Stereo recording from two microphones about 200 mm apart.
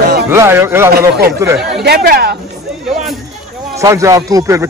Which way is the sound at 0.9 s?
50° right (ahead or behind).